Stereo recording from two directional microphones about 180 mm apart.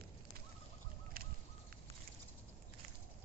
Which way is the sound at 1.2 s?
55° right (ahead or behind).